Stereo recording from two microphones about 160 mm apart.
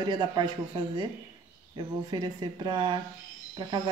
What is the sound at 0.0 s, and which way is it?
Speech, 25° right (ahead or behind).